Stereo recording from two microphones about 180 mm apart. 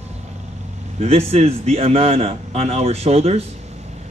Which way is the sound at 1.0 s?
35° right (ahead or behind).